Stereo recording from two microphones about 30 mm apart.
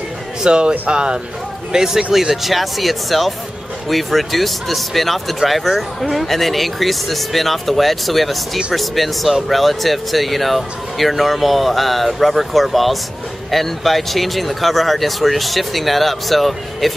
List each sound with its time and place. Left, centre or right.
0.4 s speech: right
1.7 s speech: centre